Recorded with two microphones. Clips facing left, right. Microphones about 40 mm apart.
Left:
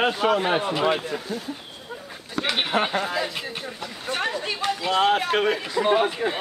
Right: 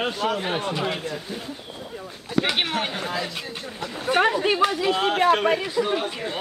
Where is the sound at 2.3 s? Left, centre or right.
Centre.